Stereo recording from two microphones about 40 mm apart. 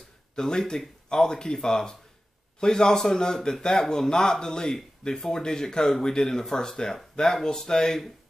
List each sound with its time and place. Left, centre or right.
0.4 s speech: centre